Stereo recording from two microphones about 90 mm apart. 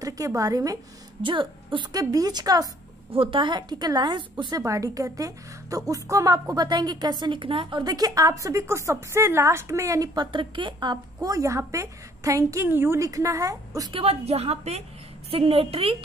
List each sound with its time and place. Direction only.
0.0 s a woman's voice: 40° right (ahead or behind)
1.2 s a woman's voice: 70° right (ahead or behind)
1.9 s speech: 45° right (ahead or behind)
3.1 s a woman's voice: 80° right; by 4.6 s 55° right (ahead or behind)
4.6 s a woman's voice: 40° right (ahead or behind); by 7.8 s 65° right (ahead or behind)
7.8 s a woman's voice: 45° right (ahead or behind)
10.1 s a woman's voice: 65° right (ahead or behind)
11.1 s a woman's voice: 40° right (ahead or behind)
13.0 s a woman's voice: 35° right (ahead or behind)
13.9 s a woman's voice: 90° right